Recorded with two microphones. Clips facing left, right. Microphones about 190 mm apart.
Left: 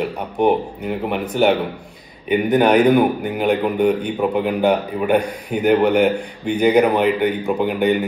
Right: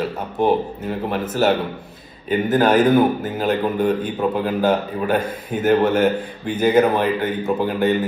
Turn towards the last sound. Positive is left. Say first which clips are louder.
# left 1 dB
turn(degrees=15)  # may be behind; listen again after turning